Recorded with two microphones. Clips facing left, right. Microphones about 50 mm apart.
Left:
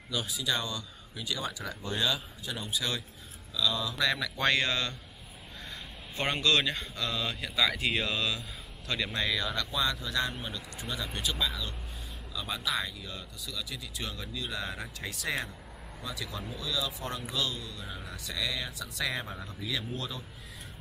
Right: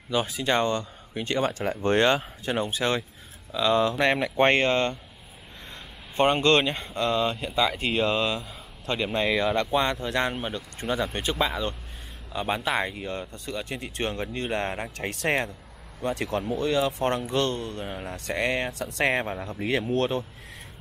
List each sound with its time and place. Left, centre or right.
0.1 s speech: right
6.1 s speech: right